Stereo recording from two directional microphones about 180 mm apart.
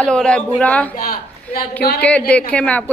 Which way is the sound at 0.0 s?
5° left (ahead or behind).